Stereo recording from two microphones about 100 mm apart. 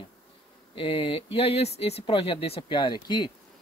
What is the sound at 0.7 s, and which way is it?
Speech, 60° left (ahead or behind).